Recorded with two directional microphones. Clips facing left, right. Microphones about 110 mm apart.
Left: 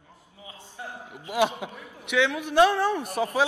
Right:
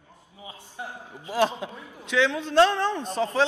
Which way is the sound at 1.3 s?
15° left (ahead or behind).